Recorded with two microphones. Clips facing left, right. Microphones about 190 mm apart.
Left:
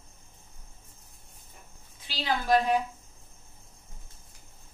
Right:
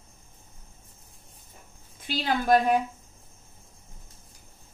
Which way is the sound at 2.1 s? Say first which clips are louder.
Right 3 dB; 50° right (ahead or behind).